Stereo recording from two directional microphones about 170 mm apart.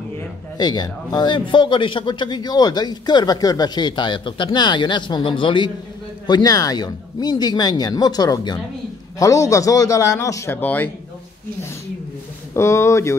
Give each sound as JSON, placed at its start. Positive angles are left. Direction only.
{"t": 0.6, "sound": "a man's voice", "side_deg": 25}
{"t": 12.5, "sound": "speech", "side_deg": 15}